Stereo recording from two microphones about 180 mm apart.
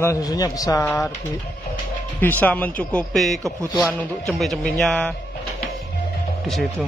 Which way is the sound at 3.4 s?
15° right (ahead or behind).